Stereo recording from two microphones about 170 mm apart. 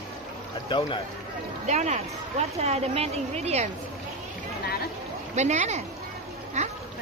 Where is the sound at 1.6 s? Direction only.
45° right (ahead or behind).